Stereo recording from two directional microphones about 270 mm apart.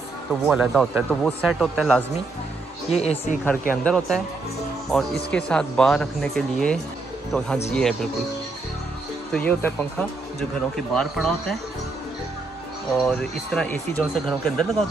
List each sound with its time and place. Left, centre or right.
0.5 s speech: centre
2.9 s speech: left
3.8 s speech: centre
9.3 s speech: centre
12.9 s speech: centre